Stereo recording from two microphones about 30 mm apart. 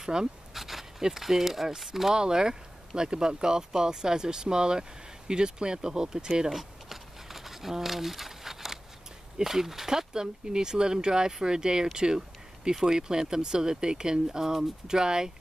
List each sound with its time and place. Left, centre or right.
0.0 s speech: right
0.6 s dog: centre
1.0 s speech: centre
2.1 s speech: right
6.5 s a sound: centre
9.4 s speech: centre